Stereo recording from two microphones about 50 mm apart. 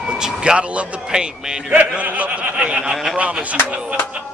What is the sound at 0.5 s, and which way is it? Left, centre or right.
A man's voice, right.